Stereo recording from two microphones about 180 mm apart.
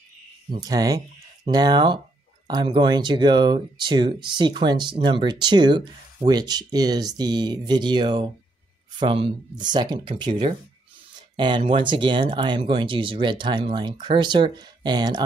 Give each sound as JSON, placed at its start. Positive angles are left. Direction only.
{"t": 0.5, "sound": "speech", "side_deg": -20}